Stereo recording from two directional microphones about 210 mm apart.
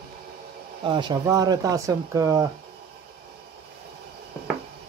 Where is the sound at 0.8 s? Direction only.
20° right (ahead or behind).